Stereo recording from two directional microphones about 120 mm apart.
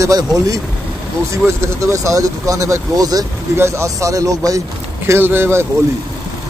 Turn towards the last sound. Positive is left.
turn(degrees=-20)  # may be behind; listen again after turning